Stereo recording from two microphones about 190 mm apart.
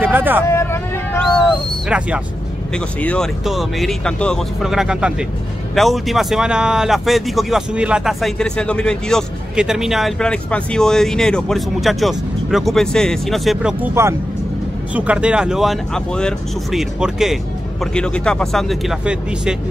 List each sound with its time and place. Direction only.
0.0 s speech: 10° right (ahead or behind)
0.5 s vehicle: 15° left (ahead or behind)
1.9 s speech: 5° right (ahead or behind)
2.7 s speech: 5° left (ahead or behind)